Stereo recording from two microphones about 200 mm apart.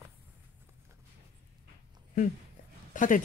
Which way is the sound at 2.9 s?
40° left (ahead or behind).